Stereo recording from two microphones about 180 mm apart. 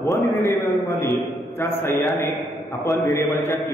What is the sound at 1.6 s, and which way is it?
Speech, 15° left (ahead or behind).